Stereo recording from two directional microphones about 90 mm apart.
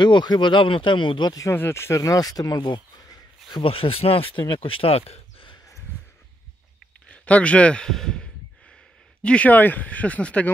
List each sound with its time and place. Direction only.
0.0 s speech: 55° left (ahead or behind)
1.5 s speech: 25° left (ahead or behind); by 3.6 s 55° left (ahead or behind)
3.6 s speech: 90° left
4.6 s a sound: 85° left
7.1 s speech: 15° left (ahead or behind)